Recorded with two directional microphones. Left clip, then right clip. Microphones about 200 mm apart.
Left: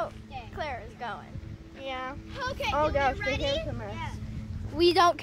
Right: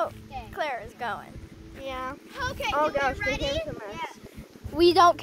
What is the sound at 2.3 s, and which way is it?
Speech, 45° right (ahead or behind).